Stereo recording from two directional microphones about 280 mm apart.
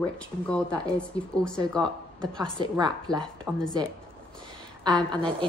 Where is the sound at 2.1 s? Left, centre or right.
Centre.